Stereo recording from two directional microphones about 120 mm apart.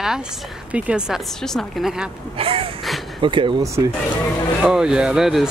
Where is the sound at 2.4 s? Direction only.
55° right (ahead or behind).